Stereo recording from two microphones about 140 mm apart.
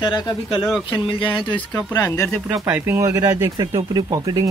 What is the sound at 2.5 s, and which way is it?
Speech, 15° right (ahead or behind).